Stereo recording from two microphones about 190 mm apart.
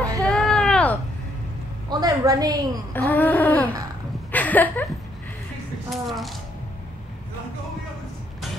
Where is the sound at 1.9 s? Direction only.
20° right (ahead or behind).